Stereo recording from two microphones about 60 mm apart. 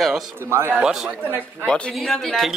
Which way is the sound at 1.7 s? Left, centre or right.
Centre.